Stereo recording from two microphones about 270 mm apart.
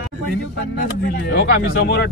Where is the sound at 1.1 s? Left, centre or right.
Left.